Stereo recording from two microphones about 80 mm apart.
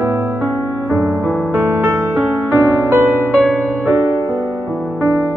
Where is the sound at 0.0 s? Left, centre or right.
Right.